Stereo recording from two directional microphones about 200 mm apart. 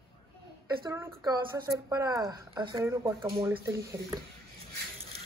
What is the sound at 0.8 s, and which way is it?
Speech, 15° right (ahead or behind).